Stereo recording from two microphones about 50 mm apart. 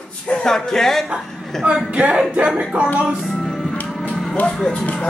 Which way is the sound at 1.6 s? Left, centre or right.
Right.